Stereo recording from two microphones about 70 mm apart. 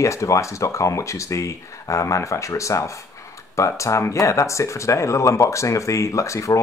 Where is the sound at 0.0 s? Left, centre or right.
Left.